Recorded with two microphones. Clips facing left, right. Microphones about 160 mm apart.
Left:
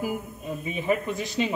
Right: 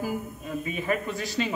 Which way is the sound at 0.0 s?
15° left (ahead or behind).